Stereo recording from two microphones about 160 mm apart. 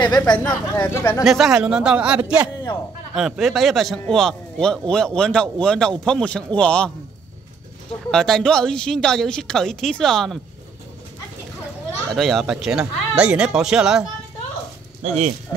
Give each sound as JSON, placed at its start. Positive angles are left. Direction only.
{"t": 0.0, "sound": "speech", "side_deg": 25}
{"t": 1.2, "sound": "a man's voice", "side_deg": 0}
{"t": 8.1, "sound": "a man's voice", "side_deg": 0}
{"t": 12.1, "sound": "a man's voice", "side_deg": 0}
{"t": 15.0, "sound": "speech", "side_deg": -45}